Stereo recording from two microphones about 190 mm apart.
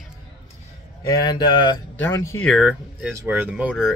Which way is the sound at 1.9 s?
10° left (ahead or behind).